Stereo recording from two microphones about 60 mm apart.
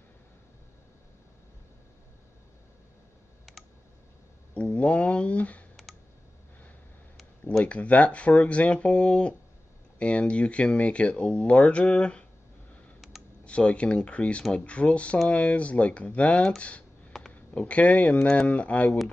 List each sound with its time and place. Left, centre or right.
3.5 s clicking: centre
4.7 s speech: left
7.6 s speech: left
13.0 s computer keyboard: centre
13.5 s speech: centre
17.1 s a sound: centre
17.6 s speech: left